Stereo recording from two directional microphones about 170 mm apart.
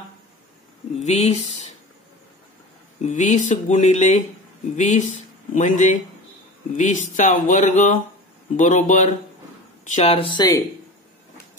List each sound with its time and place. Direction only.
0.9 s speech: 40° left (ahead or behind)
3.0 s speech: 45° left (ahead or behind); by 10.6 s 25° left (ahead or behind)